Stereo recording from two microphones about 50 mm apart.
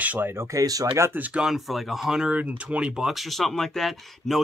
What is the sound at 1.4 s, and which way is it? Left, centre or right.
Speech, centre.